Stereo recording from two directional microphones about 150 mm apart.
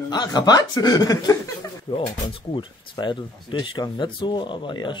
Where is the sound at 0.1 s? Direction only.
25° left (ahead or behind).